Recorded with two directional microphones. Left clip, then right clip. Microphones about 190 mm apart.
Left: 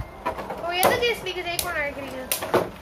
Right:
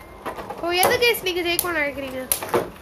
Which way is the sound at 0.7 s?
60° right (ahead or behind).